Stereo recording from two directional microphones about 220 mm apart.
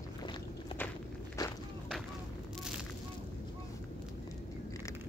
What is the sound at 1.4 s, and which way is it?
Walk, 20° left (ahead or behind).